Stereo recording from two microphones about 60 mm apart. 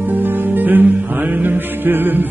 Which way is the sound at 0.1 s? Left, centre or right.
Right.